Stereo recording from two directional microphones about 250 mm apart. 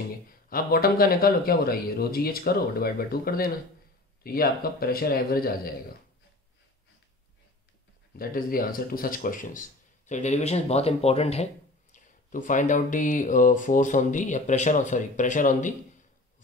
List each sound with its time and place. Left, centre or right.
0.3 s speech: left
8.2 s speech: left